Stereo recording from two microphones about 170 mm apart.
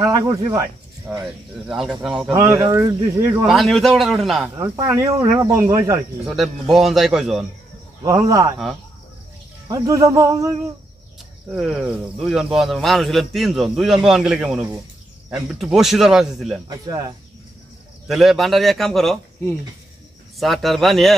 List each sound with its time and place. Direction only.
0.0 s a sound: 20° right (ahead or behind)
1.0 s speech: 5° right (ahead or behind)
2.3 s speech: 15° right (ahead or behind)
3.4 s speech: centre (ahead or behind)
4.6 s speech: 15° right (ahead or behind)
6.2 s speech: centre (ahead or behind)
8.3 s a sound: 20° right (ahead or behind)
9.7 s a sound: 20° right (ahead or behind)
11.5 s speech: 5° right (ahead or behind)
16.6 s a sound: 20° right (ahead or behind)
18.0 s speech: centre (ahead or behind)
20.3 s speech: centre (ahead or behind)